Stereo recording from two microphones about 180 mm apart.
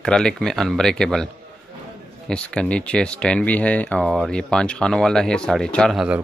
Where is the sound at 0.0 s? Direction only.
5° left (ahead or behind).